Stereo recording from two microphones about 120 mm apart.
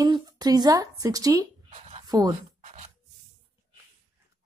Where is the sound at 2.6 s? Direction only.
70° right (ahead or behind).